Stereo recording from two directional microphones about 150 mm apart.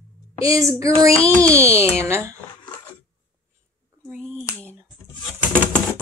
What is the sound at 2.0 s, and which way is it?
Speech, 15° right (ahead or behind).